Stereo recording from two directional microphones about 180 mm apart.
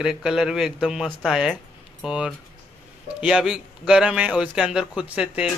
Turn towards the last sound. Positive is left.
turn(degrees=-5)  # may be behind; listen again after turning